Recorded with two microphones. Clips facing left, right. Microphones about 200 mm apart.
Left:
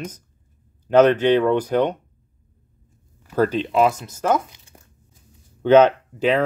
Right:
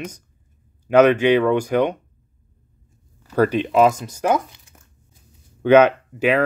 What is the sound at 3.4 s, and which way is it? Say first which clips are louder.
Speech: right 2 dB; 15° right (ahead or behind).